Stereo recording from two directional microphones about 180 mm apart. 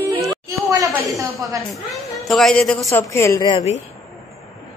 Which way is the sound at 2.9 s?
15° left (ahead or behind).